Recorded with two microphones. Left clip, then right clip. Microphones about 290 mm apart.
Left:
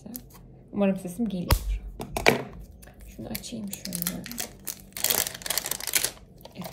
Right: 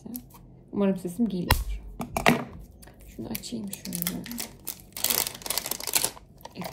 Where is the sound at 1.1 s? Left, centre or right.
Left.